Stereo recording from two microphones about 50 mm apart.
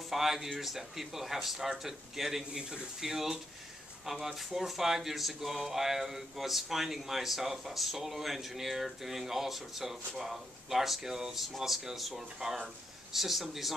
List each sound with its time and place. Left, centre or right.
0.1 s speech: centre